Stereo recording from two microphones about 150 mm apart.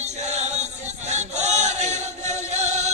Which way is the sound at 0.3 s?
50° right (ahead or behind).